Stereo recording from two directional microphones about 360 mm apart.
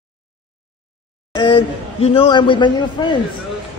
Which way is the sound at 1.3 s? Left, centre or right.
Centre.